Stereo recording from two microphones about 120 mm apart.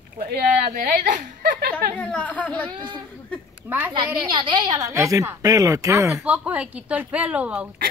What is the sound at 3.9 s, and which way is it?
Speech, 45° right (ahead or behind).